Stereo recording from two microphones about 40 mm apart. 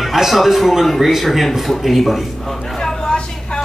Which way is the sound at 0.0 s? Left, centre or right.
Centre.